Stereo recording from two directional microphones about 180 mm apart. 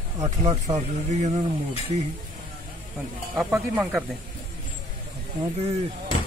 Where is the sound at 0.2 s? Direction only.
40° right (ahead or behind).